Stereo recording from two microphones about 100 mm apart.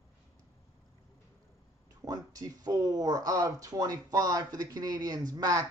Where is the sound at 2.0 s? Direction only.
35° right (ahead or behind).